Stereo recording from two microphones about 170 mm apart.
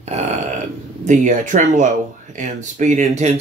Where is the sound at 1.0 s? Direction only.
45° right (ahead or behind).